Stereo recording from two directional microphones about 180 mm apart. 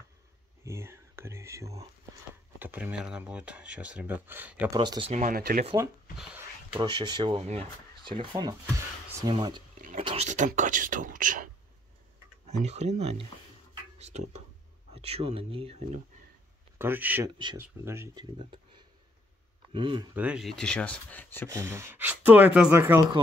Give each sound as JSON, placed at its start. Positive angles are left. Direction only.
{"t": 0.7, "sound": "whispering", "side_deg": -15}
{"t": 2.6, "sound": "speech", "side_deg": -10}
{"t": 4.7, "sound": "speech", "side_deg": -25}
{"t": 5.1, "sound": "speech", "side_deg": -45}
{"t": 6.1, "sound": "speech", "side_deg": -5}
{"t": 6.7, "sound": "speech", "side_deg": -25}
{"t": 9.8, "sound": "a sound", "side_deg": -45}
{"t": 10.0, "sound": "speech", "side_deg": -35}
{"t": 12.4, "sound": "speech", "side_deg": -40}
{"t": 16.7, "sound": "speech", "side_deg": -10}
{"t": 19.7, "sound": "speech", "side_deg": -25}
{"t": 20.2, "sound": "speech", "side_deg": -5}
{"t": 21.5, "sound": "speech", "side_deg": -15}